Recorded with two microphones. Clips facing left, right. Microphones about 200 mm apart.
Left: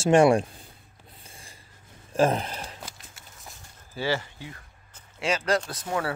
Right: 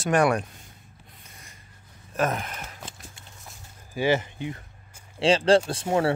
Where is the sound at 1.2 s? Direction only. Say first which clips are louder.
Left 3 dB; 30° left (ahead or behind).